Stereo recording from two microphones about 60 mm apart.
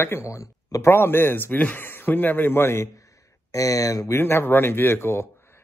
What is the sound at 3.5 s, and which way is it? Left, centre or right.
Speech, left.